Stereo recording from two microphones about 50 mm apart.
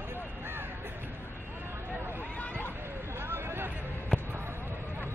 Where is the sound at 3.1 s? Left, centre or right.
Right.